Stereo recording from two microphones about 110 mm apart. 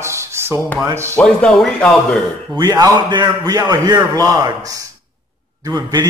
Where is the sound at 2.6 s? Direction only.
35° right (ahead or behind).